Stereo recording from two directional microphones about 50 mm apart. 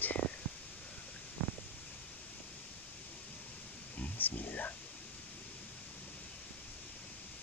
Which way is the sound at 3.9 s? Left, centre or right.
Left.